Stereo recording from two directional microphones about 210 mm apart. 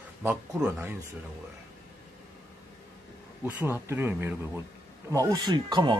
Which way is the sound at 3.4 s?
10° right (ahead or behind).